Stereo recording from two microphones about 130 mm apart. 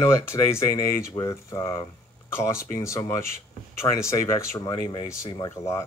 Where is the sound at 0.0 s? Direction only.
20° left (ahead or behind).